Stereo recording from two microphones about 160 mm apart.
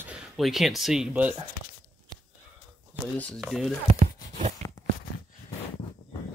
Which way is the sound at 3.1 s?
5° left (ahead or behind).